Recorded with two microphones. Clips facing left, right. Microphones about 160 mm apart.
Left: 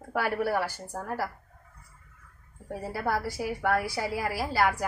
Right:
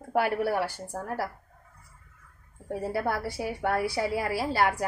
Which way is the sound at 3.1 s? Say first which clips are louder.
Left 1 dB; 25° right (ahead or behind).